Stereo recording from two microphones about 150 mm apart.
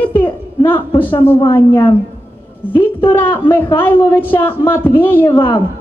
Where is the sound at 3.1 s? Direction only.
15° left (ahead or behind).